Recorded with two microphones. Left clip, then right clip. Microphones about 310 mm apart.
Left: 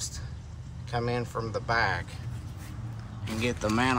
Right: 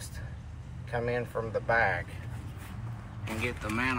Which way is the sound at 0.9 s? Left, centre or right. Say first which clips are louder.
Even; centre.